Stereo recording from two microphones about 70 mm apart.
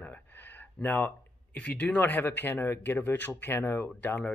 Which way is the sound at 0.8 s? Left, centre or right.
Left.